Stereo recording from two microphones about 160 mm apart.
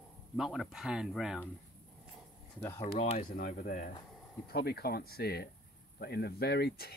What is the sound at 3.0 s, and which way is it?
Speech, 40° left (ahead or behind).